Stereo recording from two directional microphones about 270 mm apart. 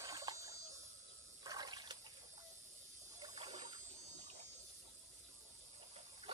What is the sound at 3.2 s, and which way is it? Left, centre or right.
Water, right.